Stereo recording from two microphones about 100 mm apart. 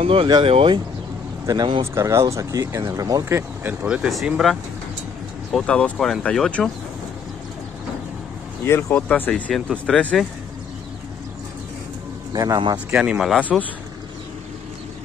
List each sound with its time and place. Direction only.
0.0 s speech: 65° right (ahead or behind)
1.4 s speech: 40° right (ahead or behind)
3.3 s speech: 25° right (ahead or behind)
3.8 s speech: 10° right (ahead or behind)
8.6 s speech: 25° left (ahead or behind)
8.9 s speech: 15° left (ahead or behind)
9.5 s speech: centre (ahead or behind)
12.3 s speech: 40° right (ahead or behind)
12.7 s speech: 15° right (ahead or behind)
13.5 s speech: centre (ahead or behind)